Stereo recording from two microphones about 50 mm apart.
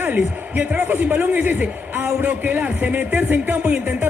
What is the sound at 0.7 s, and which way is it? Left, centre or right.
A man's voice, right.